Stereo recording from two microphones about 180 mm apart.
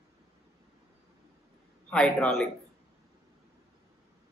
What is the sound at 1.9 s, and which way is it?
Speech, 5° left (ahead or behind).